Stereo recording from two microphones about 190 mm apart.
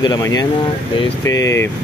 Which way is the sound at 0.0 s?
20° left (ahead or behind).